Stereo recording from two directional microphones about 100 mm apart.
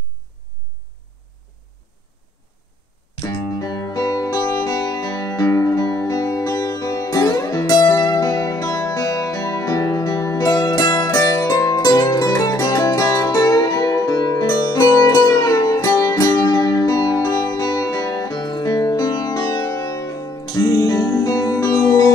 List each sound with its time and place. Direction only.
3.2 s music: 35° left (ahead or behind)